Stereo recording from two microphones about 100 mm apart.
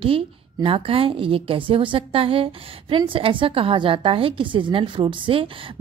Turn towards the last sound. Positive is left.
turn(degrees=-60)  # may be behind; listen again after turning